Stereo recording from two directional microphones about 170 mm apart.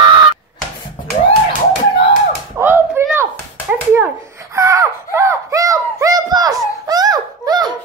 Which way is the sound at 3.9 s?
15° right (ahead or behind).